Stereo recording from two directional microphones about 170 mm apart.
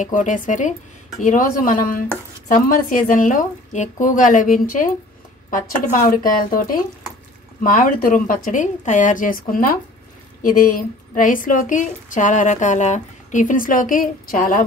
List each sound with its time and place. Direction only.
0.0 s a woman's voice: 50° left (ahead or behind)